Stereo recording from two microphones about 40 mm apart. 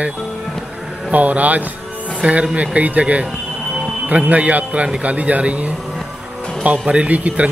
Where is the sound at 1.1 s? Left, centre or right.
Right.